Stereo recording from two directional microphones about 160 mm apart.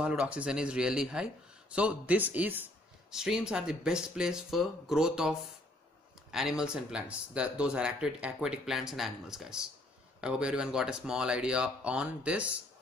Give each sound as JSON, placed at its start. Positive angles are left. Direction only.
{"t": 0.0, "sound": "speech", "side_deg": -5}
{"t": 6.3, "sound": "speech", "side_deg": -5}